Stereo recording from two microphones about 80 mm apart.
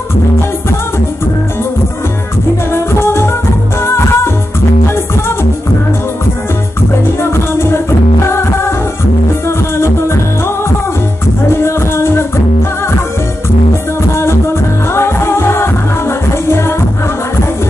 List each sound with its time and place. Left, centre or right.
2.7 s music: left
7.2 s music: left
9.8 s music: left
14.9 s music: left